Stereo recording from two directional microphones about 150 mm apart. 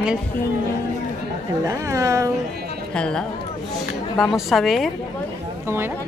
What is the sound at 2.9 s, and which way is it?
Speech, 5° left (ahead or behind).